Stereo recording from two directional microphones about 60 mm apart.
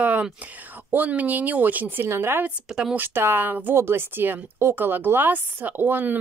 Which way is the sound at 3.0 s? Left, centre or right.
Right.